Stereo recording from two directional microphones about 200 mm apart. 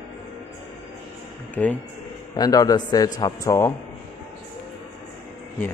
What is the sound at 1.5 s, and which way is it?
Speech, 5° left (ahead or behind).